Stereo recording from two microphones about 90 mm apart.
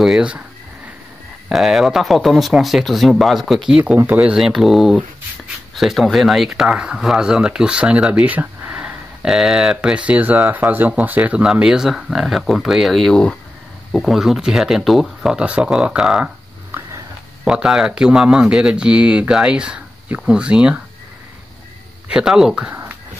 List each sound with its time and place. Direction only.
0.0 s speech: 5° right (ahead or behind)
1.5 s speech: centre (ahead or behind)
13.9 s speech: centre (ahead or behind)
17.5 s speech: 10° right (ahead or behind)
22.0 s speech: 10° right (ahead or behind)
22.7 s a sound: 20° right (ahead or behind)